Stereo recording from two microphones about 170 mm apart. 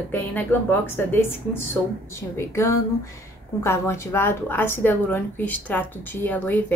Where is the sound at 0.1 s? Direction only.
10° left (ahead or behind).